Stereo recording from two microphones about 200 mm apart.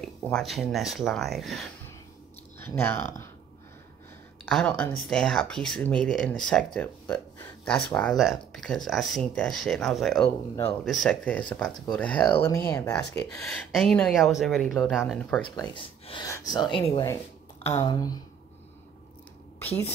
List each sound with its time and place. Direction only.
0.0 s speech: 5° left (ahead or behind)
4.5 s speech: 5° left (ahead or behind)
10.2 s speech: 15° left (ahead or behind)
13.2 s speech: 5° left (ahead or behind)
15.7 s speech: 20° left (ahead or behind)